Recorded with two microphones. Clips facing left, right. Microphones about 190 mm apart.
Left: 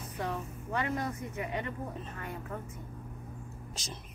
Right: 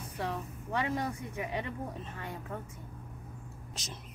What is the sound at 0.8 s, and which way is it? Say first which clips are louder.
Speech: even; 15° right (ahead or behind).